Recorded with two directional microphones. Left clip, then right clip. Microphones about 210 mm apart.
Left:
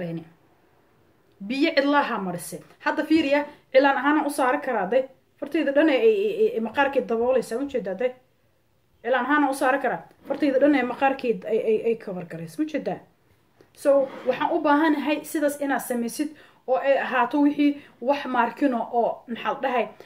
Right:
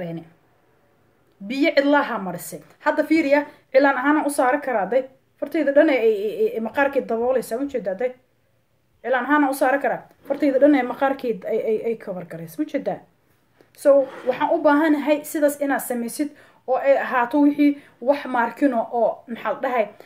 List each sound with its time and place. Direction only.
1.5 s a woman's voice: 5° left (ahead or behind)